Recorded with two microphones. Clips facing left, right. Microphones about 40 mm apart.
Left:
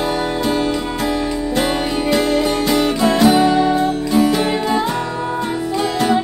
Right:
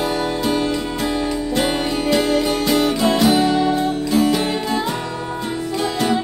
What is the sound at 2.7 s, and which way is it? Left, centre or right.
Music, centre.